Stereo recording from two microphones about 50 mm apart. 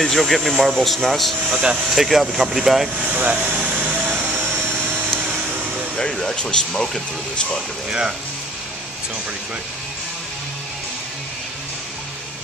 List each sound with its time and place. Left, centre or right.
0.0 s speech: centre
1.5 s speech: centre
2.0 s speech: centre
3.1 s speech: right
5.9 s speech: centre